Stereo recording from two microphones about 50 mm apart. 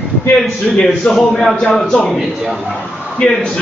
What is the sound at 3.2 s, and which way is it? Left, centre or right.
Speech, centre.